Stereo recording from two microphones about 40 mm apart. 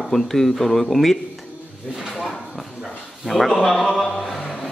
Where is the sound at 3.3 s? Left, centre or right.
Centre.